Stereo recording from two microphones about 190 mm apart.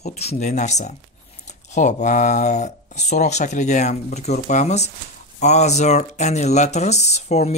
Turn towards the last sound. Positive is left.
turn(degrees=35)  # may be behind; listen again after turning